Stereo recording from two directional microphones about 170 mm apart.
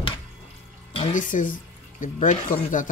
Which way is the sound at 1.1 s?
50° left (ahead or behind).